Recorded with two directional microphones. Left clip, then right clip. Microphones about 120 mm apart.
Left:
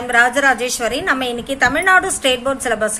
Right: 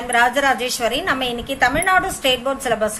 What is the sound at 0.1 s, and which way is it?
A woman's voice, 30° left (ahead or behind).